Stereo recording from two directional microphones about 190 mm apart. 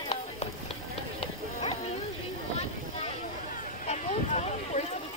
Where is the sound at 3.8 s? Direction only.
35° left (ahead or behind).